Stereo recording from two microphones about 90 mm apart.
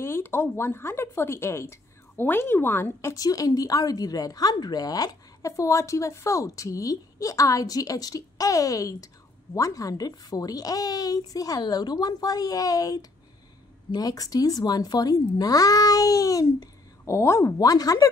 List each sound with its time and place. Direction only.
0.0 s a woman's voice: 25° left (ahead or behind)
3.2 s a woman's voice: 45° left (ahead or behind)
17.6 s speech: 40° left (ahead or behind)